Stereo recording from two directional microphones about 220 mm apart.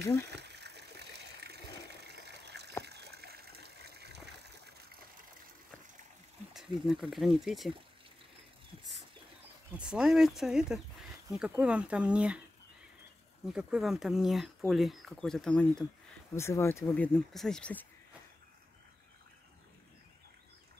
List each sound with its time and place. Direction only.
0.2 s water: 50° right (ahead or behind)
4.4 s a sound: 50° right (ahead or behind)
6.5 s speech: centre (ahead or behind)
9.8 s speech: 5° right (ahead or behind)
13.5 s speech: 5° right (ahead or behind)